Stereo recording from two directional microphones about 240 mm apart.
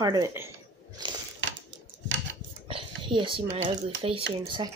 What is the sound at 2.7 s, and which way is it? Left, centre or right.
Speech, right.